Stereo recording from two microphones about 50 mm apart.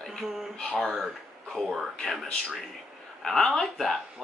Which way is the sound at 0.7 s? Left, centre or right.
Centre.